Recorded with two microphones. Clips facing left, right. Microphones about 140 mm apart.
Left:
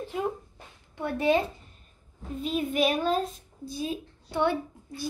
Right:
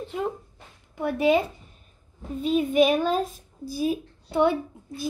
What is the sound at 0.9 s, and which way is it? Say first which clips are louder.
Speech: right 3 dB; 10° right (ahead or behind).